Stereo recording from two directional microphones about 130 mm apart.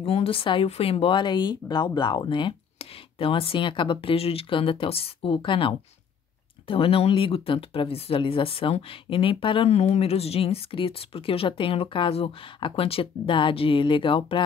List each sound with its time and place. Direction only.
0.0 s speech: 50° left (ahead or behind)